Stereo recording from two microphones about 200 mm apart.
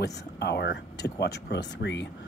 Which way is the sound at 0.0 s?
55° left (ahead or behind).